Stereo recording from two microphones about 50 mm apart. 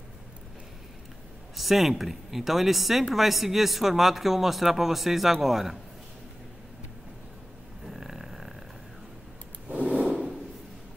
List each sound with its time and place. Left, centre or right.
1.6 s speech: centre
7.8 s snoring: centre
9.7 s a sound: centre